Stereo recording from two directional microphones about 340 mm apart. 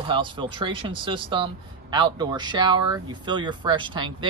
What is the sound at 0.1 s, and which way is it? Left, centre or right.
Speech, centre.